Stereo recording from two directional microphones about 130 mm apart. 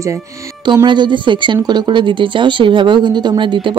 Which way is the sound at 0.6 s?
35° right (ahead or behind).